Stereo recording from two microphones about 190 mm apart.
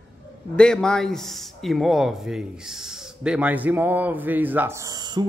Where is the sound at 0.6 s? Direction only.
5° left (ahead or behind).